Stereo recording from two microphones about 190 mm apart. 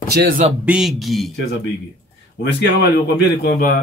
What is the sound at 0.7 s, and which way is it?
Speech, centre (ahead or behind).